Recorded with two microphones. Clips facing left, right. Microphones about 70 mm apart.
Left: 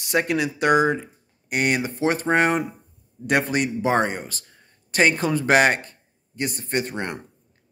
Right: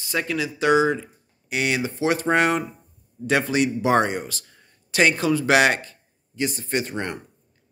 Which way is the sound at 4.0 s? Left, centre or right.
Centre.